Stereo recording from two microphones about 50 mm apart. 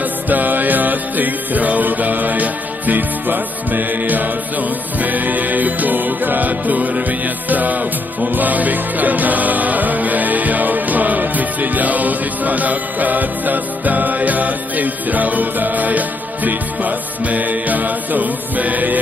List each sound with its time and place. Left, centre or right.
0.3 s music: right